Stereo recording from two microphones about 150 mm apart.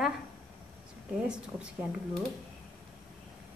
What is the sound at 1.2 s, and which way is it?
Speech, 10° right (ahead or behind).